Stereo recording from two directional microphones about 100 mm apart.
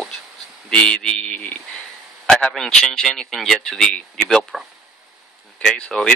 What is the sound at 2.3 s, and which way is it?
A man's voice, 5° left (ahead or behind).